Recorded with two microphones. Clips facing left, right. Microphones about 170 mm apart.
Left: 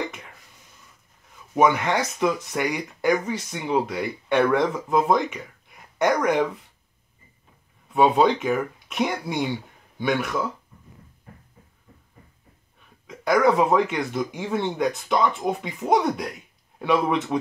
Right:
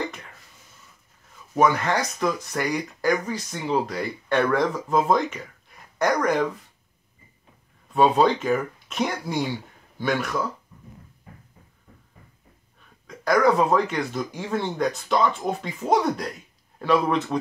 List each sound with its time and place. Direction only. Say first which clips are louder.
1.5 s speech: left 1 dB; 15° left (ahead or behind)
5.9 s speech: left 1 dB; 20° left (ahead or behind)
7.9 s speech: even; 15° left (ahead or behind)
8.8 s throat clearing: left 1 dB; 15° left (ahead or behind)
9.3 s speech: even; 15° left (ahead or behind)
13.1 s a man's voice: even; 20° left (ahead or behind)